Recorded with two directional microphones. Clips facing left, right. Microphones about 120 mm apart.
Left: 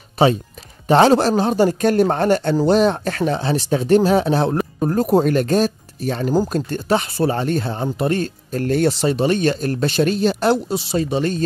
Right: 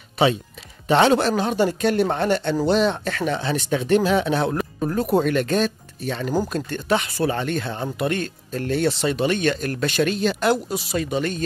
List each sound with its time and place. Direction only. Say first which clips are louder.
0.2 s speech: left 4 dB; 35° left (ahead or behind)